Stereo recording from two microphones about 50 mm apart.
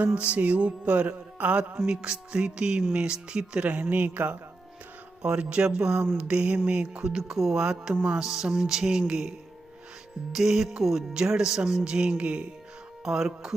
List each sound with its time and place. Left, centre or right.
0.0 s music: right
1.9 s speech: centre
3.7 s speech: right
5.2 s music: centre
7.5 s speech: centre
10.3 s speech: centre